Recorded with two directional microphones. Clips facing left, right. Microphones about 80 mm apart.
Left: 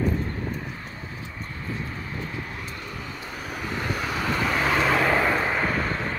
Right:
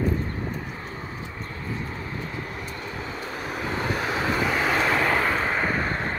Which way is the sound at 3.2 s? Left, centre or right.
Right.